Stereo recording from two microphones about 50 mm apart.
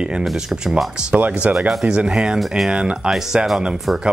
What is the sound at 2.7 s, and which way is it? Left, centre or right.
Speech, centre.